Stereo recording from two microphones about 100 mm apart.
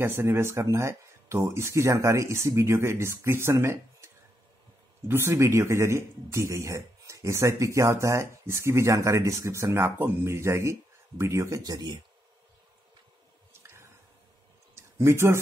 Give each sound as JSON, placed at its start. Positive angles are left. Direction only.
{"t": 0.0, "sound": "speech", "side_deg": -25}
{"t": 13.5, "sound": "squish", "side_deg": -25}
{"t": 14.8, "sound": "a sound", "side_deg": -25}